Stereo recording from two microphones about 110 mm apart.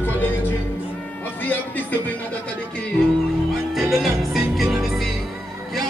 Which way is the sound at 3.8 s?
Centre (ahead or behind).